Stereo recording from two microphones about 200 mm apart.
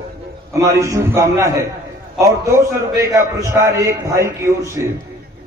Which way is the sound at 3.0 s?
15° right (ahead or behind).